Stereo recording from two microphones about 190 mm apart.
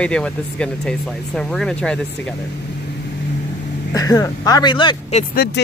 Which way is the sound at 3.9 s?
20° left (ahead or behind).